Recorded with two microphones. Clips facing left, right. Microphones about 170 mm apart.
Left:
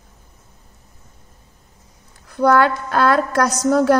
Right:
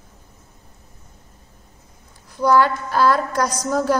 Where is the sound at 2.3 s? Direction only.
60° left (ahead or behind).